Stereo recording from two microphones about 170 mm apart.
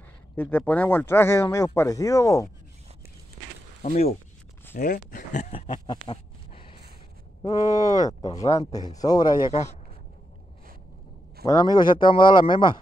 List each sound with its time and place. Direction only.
0.4 s speech: 10° left (ahead or behind)
3.8 s speech: 45° left (ahead or behind); by 9.5 s 25° left (ahead or behind)
11.4 s speech: 25° left (ahead or behind)